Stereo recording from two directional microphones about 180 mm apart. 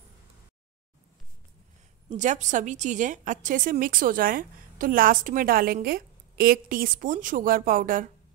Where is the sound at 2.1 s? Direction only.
40° right (ahead or behind).